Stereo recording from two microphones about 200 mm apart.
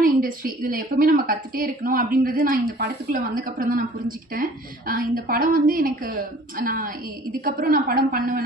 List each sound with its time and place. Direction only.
0.2 s a woman's voice: 45° right (ahead or behind)